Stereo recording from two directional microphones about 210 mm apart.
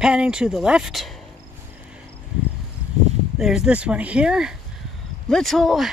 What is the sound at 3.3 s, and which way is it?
Speech, centre (ahead or behind).